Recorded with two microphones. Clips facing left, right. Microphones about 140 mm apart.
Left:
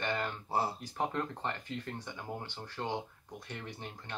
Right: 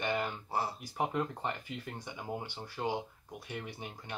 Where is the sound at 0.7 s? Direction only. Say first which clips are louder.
Right 1 dB; 10° right (ahead or behind).